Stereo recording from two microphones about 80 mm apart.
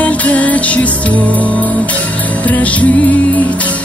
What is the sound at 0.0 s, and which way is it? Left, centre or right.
Music, centre.